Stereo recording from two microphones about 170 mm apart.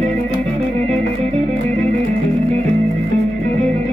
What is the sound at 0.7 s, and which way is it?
Music, 50° right (ahead or behind).